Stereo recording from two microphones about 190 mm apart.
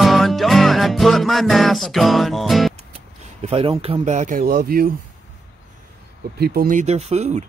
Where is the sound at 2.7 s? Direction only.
35° right (ahead or behind); by 5.0 s 50° right (ahead or behind).